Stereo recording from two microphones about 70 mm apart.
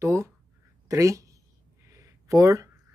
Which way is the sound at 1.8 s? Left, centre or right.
Right.